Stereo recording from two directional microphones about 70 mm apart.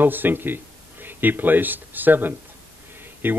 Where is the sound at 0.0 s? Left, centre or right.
Right.